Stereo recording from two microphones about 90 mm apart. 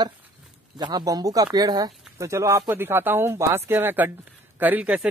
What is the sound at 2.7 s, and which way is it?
A man's voice, 25° right (ahead or behind).